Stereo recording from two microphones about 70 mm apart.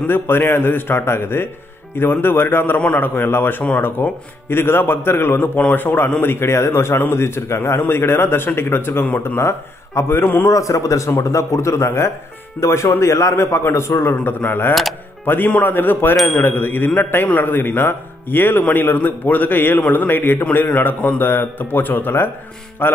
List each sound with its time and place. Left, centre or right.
0.0 s a man's voice: left
5.6 s a man's voice: left
10.5 s a man's voice: left
14.1 s a man's voice: left
14.7 s speech: centre
15.2 s a man's voice: left